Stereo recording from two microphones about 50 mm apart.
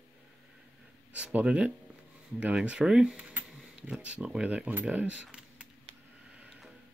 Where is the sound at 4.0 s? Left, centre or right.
Right.